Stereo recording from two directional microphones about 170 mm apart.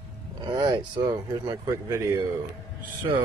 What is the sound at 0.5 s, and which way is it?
Speech, 25° right (ahead or behind).